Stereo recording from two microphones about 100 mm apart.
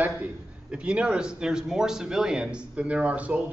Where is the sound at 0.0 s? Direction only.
15° right (ahead or behind).